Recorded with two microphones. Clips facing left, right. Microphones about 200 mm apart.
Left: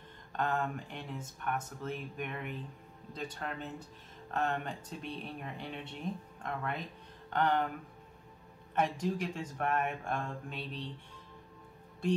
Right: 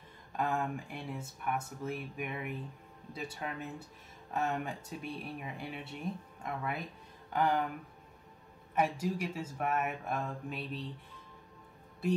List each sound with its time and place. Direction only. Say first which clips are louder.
0.3 s speech: even; 10° right (ahead or behind)
8.7 s speech: even; 5° right (ahead or behind)